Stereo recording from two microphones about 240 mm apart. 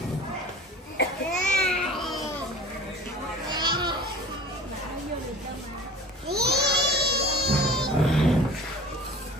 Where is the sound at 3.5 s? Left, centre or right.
Centre.